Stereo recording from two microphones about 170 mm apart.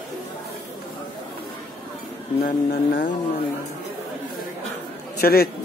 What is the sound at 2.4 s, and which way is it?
Speech, 60° left (ahead or behind).